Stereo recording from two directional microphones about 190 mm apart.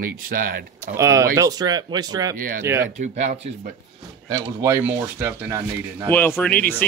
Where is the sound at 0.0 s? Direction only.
50° right (ahead or behind).